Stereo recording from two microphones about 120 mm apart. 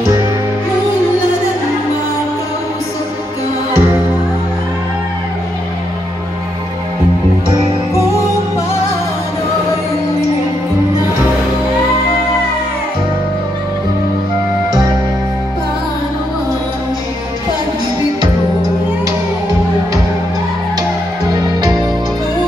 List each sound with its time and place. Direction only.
3.7 s music: 25° right (ahead or behind)